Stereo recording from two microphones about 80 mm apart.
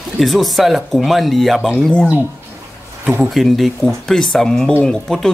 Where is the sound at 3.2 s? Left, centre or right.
Centre.